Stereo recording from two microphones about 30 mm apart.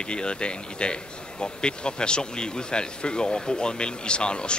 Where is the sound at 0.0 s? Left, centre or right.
Left.